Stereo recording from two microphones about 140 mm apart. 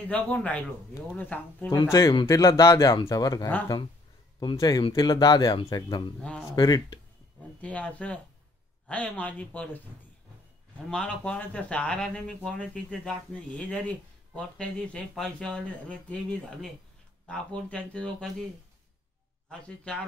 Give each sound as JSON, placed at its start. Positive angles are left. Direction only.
{"t": 0.1, "sound": "speech", "side_deg": 10}
{"t": 1.7, "sound": "speech", "side_deg": 25}
{"t": 7.6, "sound": "speech", "side_deg": 10}
{"t": 10.9, "sound": "speech", "side_deg": 5}
{"t": 17.6, "sound": "speech", "side_deg": 10}